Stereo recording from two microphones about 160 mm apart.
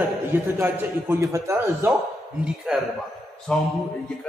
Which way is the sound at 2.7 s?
5° right (ahead or behind).